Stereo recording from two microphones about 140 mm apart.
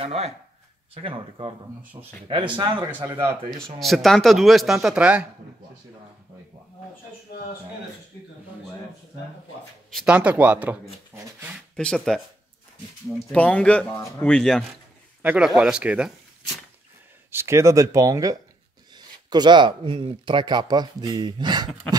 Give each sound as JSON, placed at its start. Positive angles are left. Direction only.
{"t": 0.0, "sound": "speech", "side_deg": -45}
{"t": 1.8, "sound": "speech", "side_deg": -10}
{"t": 2.2, "sound": "speech", "side_deg": -35}
{"t": 2.9, "sound": "speech", "side_deg": -15}
{"t": 3.8, "sound": "speech", "side_deg": 0}
{"t": 9.8, "sound": "speech", "side_deg": -5}
{"t": 11.7, "sound": "speech", "side_deg": 5}
{"t": 13.3, "sound": "speech", "side_deg": 10}
{"t": 15.2, "sound": "speech", "side_deg": -5}
{"t": 17.3, "sound": "speech", "side_deg": -20}